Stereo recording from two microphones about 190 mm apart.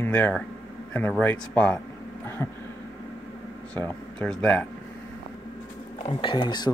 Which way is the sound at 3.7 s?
5° left (ahead or behind).